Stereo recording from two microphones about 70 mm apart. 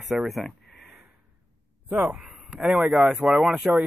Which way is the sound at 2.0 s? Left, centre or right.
Centre.